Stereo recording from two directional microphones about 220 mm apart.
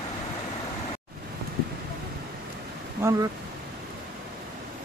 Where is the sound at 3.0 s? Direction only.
15° right (ahead or behind).